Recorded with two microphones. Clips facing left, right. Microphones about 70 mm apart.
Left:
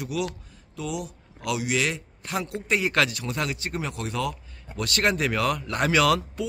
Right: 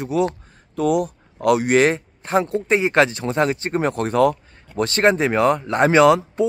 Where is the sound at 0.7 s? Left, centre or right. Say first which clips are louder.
Right 13 dB; right.